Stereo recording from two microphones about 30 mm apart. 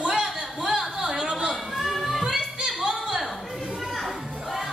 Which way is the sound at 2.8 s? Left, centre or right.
Centre.